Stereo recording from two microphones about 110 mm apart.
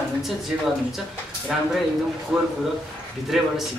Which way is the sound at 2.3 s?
5° right (ahead or behind).